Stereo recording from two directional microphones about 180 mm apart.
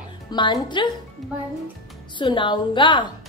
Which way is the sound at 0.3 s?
25° left (ahead or behind).